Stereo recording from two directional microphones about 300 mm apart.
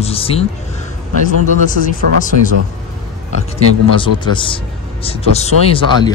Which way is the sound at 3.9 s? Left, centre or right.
Centre.